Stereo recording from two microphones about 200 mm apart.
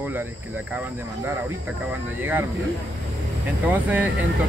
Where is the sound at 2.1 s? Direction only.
10° right (ahead or behind).